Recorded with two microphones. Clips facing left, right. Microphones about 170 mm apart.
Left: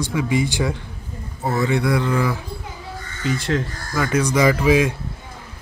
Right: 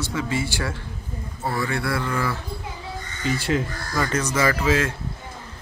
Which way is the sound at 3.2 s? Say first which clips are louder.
Left 1 dB; 5° right (ahead or behind).